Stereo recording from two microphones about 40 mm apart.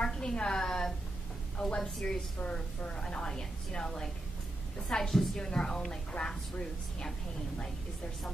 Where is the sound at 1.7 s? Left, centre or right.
Left.